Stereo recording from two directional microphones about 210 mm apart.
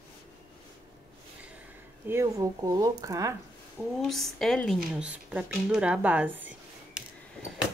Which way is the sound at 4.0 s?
Centre (ahead or behind).